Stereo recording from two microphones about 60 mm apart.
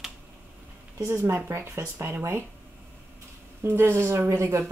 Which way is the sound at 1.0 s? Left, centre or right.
Right.